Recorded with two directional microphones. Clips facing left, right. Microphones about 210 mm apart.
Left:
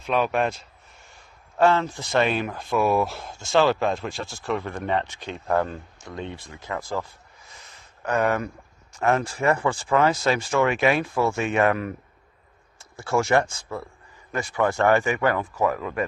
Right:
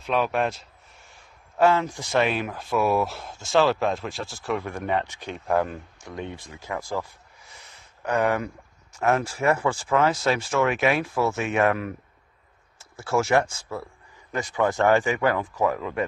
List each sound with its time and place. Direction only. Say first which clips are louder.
0.0 s speech: left 1 dB; centre (ahead or behind); by 6.6 s 15° right (ahead or behind)
6.7 s a sound: even; 10° right (ahead or behind)
9.0 s speech: even; 5° right (ahead or behind)